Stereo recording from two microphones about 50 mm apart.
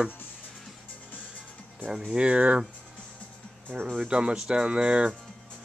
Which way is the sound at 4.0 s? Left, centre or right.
Right.